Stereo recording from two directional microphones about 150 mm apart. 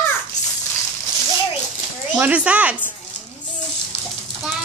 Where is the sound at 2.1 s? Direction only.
10° right (ahead or behind).